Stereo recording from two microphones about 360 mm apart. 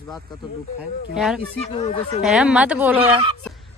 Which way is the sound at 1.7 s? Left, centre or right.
Centre.